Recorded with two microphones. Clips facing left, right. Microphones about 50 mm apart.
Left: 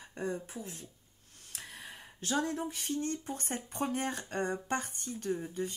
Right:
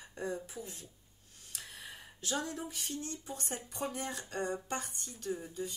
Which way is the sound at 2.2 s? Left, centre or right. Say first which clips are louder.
Left 5 dB; left.